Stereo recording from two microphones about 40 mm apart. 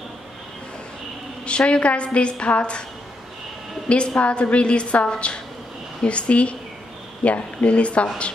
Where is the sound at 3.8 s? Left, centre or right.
Left.